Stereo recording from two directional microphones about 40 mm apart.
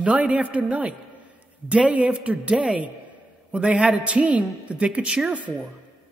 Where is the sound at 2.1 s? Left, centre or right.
Right.